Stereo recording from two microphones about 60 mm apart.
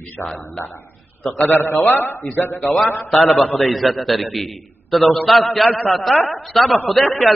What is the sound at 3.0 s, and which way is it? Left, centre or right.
A man's voice, centre.